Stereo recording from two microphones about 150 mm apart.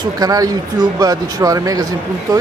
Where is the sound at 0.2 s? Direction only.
25° right (ahead or behind).